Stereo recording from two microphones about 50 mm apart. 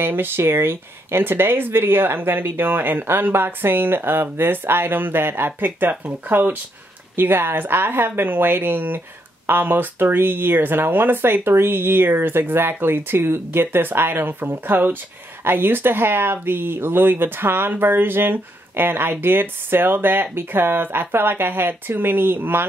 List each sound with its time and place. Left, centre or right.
0.0 s speech: right
7.2 s speech: right